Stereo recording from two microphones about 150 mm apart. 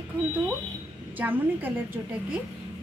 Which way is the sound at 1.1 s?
10° right (ahead or behind).